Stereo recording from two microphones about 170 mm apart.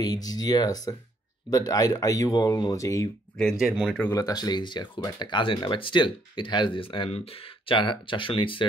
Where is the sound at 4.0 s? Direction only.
15° left (ahead or behind).